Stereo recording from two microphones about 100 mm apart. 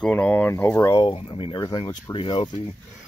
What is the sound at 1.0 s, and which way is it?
Speech, 60° left (ahead or behind).